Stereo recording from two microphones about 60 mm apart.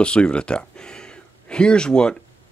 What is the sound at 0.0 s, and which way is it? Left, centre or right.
Speech, centre.